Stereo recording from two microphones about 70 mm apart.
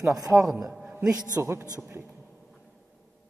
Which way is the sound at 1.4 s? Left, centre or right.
Right.